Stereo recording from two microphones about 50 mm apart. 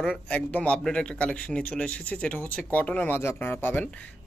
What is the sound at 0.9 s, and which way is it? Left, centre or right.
Speech, left.